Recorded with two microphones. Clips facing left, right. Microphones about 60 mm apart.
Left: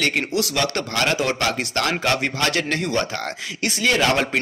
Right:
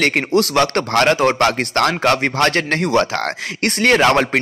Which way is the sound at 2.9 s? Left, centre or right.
Right.